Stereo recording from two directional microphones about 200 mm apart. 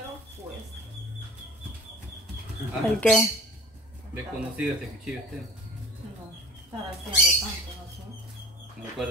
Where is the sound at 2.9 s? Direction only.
5° left (ahead or behind).